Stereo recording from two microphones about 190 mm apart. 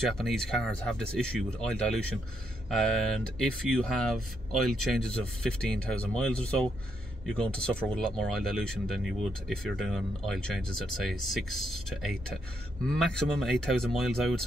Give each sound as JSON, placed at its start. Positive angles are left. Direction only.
{"t": 0.2, "sound": "speech", "side_deg": 0}